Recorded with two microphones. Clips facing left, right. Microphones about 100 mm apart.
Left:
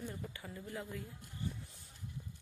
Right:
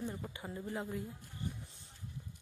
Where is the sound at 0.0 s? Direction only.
25° right (ahead or behind).